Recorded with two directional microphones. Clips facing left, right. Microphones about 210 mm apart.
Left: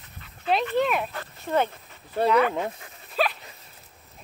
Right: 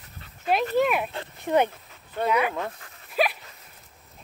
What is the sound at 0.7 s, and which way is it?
Speech, 5° right (ahead or behind).